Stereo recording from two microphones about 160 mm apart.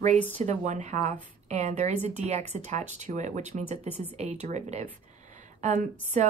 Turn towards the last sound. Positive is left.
turn(degrees=-50)  # may be behind; listen again after turning